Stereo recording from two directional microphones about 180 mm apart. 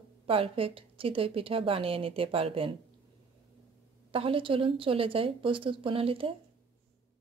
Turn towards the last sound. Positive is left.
turn(degrees=-30)  # may be behind; listen again after turning